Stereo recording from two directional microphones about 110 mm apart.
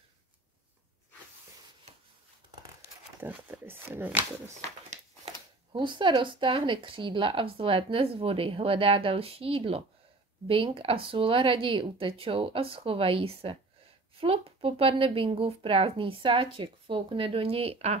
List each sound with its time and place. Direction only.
3.2 s speech: 15° right (ahead or behind)
4.8 s a sound: 90° right
5.7 s speech: 45° right (ahead or behind)